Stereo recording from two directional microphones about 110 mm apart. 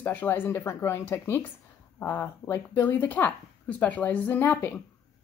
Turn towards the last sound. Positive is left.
turn(degrees=20)  # may be behind; listen again after turning